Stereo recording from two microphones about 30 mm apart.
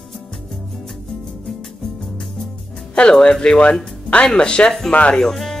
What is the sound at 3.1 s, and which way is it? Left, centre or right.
Speech, left.